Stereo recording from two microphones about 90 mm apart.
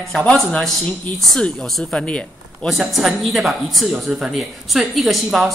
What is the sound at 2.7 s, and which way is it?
Speech, 5° right (ahead or behind).